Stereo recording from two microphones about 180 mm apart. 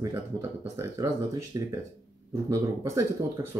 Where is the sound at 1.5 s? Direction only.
20° right (ahead or behind).